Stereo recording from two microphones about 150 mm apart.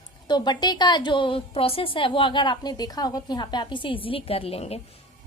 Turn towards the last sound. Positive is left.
turn(degrees=40)  # may be behind; listen again after turning